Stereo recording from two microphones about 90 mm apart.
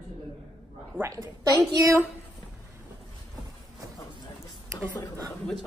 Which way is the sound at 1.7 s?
35° right (ahead or behind).